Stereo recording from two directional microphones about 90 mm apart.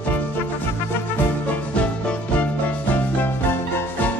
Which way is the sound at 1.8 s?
15° left (ahead or behind).